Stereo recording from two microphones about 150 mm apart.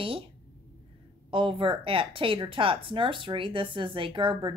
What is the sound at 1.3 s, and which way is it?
Speech, 35° right (ahead or behind).